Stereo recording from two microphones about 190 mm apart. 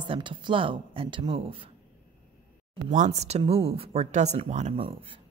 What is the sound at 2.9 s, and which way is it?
Speech, 35° right (ahead or behind).